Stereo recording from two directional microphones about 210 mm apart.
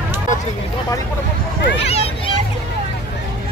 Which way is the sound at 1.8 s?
25° left (ahead or behind).